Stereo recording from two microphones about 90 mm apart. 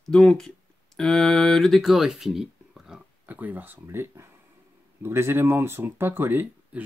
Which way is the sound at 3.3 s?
20° right (ahead or behind).